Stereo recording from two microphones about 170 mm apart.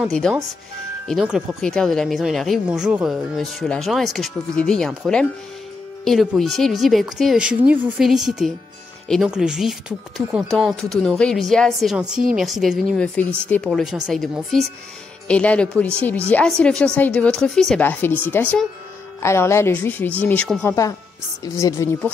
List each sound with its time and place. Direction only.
0.0 s speech: centre (ahead or behind); by 22.1 s 15° left (ahead or behind)